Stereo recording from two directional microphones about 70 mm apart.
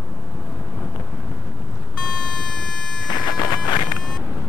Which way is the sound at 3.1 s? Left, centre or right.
Left.